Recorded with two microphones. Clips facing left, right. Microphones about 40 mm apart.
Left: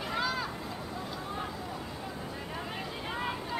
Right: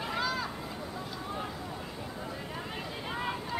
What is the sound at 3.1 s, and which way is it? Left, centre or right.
Vehicle, centre.